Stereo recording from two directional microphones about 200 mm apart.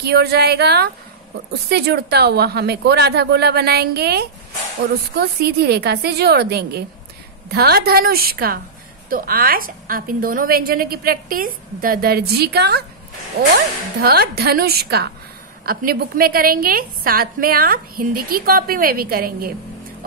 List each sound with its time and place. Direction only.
0.0 s a woman's voice: 55° right (ahead or behind)
14.0 s a woman's voice: 50° right (ahead or behind)